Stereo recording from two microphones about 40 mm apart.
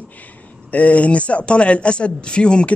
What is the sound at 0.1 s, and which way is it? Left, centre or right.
Speech, left.